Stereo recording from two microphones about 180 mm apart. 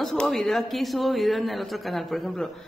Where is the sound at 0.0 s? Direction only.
5° left (ahead or behind).